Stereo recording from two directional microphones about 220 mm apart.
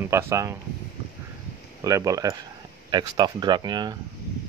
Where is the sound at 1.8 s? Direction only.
15° right (ahead or behind).